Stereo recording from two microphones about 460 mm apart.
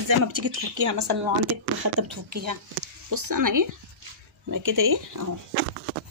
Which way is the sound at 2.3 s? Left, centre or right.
Right.